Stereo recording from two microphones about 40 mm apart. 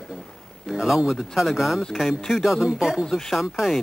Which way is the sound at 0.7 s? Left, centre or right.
Centre.